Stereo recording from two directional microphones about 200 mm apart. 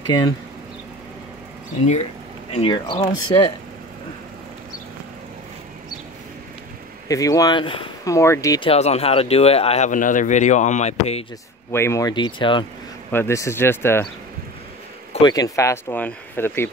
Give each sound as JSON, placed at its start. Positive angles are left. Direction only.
{"t": 0.0, "sound": "speech", "side_deg": 20}
{"t": 2.5, "sound": "speech", "side_deg": 30}
{"t": 7.1, "sound": "speech", "side_deg": 15}
{"t": 8.6, "sound": "speech", "side_deg": 30}
{"t": 11.7, "sound": "speech", "side_deg": 15}
{"t": 13.1, "sound": "speech", "side_deg": 15}
{"t": 15.2, "sound": "speech", "side_deg": 20}